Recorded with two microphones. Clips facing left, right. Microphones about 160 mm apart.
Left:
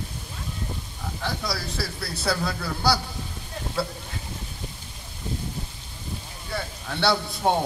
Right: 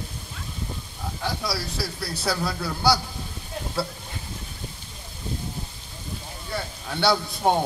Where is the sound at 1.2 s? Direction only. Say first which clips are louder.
Right 1 dB; centre (ahead or behind).